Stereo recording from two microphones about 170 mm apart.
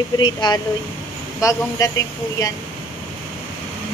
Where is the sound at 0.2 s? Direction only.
25° left (ahead or behind).